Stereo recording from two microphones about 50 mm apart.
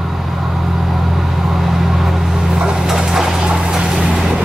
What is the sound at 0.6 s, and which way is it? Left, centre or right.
Vehicle, centre.